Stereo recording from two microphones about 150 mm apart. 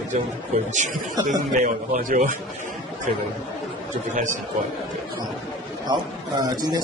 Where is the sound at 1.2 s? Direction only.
60° right (ahead or behind).